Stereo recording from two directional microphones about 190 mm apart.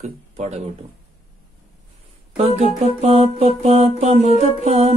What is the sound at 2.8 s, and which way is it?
Music, 35° right (ahead or behind).